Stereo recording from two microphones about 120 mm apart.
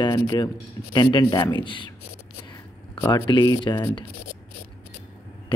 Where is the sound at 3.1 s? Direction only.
35° left (ahead or behind).